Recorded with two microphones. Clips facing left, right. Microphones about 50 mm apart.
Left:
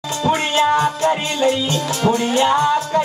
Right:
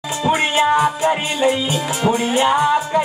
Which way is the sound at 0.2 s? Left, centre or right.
Centre.